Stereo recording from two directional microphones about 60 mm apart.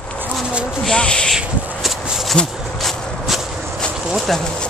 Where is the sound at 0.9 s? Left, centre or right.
Centre.